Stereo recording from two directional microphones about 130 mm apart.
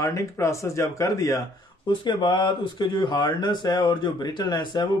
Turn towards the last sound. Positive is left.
turn(degrees=35)  # may be behind; listen again after turning